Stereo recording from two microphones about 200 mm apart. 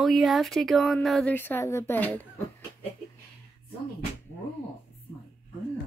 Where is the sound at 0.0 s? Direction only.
Centre (ahead or behind).